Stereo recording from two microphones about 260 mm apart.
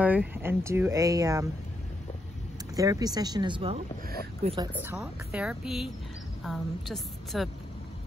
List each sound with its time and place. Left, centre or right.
0.0 s speech: centre
2.7 s speech: centre
4.8 s a woman's voice: centre